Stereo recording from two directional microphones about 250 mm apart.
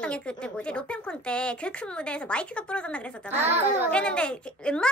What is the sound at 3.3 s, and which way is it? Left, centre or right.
Speech, centre.